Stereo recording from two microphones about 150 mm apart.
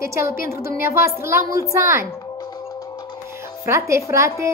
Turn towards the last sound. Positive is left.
turn(degrees=-20)  # may be behind; listen again after turning